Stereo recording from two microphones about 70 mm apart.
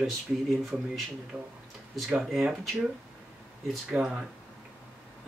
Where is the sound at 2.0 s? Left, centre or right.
Centre.